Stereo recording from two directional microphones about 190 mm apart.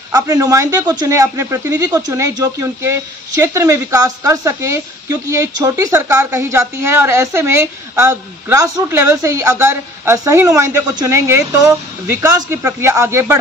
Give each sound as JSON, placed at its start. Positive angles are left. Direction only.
{"t": 0.1, "sound": "speech", "side_deg": -20}